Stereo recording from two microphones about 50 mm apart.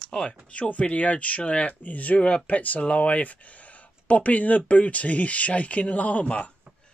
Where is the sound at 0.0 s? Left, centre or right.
Centre.